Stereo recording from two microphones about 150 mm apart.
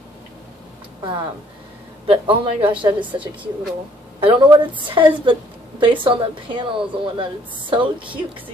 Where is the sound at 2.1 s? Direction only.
35° right (ahead or behind).